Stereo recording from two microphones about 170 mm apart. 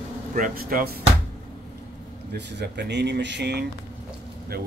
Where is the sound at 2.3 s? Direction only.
80° right.